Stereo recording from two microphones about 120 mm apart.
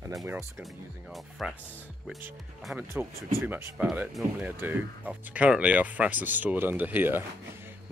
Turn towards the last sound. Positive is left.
turn(degrees=-20)  # may be behind; listen again after turning